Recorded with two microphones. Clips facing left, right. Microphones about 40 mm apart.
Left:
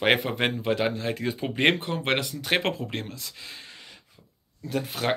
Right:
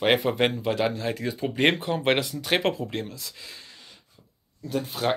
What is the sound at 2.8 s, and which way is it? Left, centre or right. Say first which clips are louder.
Speech: right 2 dB; centre.